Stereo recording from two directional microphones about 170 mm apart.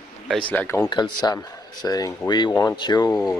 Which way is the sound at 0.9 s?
25° left (ahead or behind).